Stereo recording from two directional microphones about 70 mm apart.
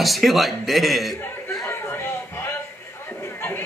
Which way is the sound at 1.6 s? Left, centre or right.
Left.